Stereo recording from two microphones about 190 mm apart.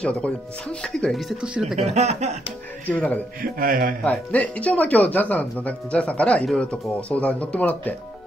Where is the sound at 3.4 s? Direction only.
50° right (ahead or behind).